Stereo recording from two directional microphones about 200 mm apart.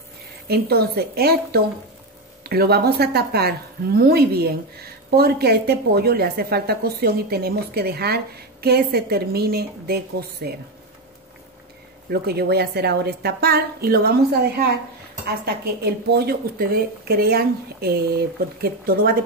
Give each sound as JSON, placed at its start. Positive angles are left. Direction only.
{"t": 0.5, "sound": "a woman's voice", "side_deg": -50}
{"t": 12.1, "sound": "a woman's voice", "side_deg": -50}